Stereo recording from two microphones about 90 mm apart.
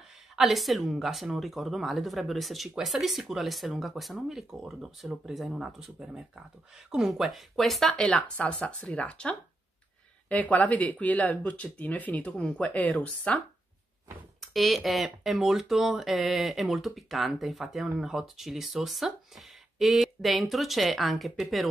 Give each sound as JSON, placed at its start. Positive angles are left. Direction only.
{"t": 0.4, "sound": "speech", "side_deg": 0}
{"t": 14.4, "sound": "speech", "side_deg": 0}